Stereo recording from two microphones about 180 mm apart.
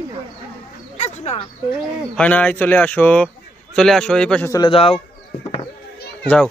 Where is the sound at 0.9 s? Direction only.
35° left (ahead or behind).